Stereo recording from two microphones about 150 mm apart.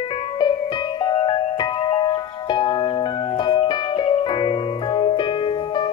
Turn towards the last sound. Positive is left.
turn(degrees=30)  # may be behind; listen again after turning